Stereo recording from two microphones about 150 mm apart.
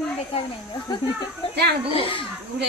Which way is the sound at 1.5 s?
90° right.